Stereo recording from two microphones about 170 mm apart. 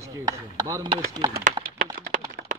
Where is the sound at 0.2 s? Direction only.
20° right (ahead or behind).